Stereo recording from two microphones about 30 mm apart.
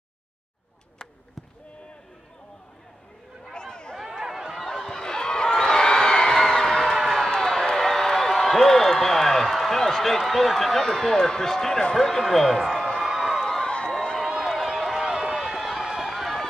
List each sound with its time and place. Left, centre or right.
3.5 s a sound: left
4.6 s a sound: centre
11.1 s speech: centre
12.7 s a sound: centre
13.0 s crowd: centre
13.4 s run: centre
14.1 s run: centre
15.0 s run: right
15.3 s run: centre
16.0 s run: centre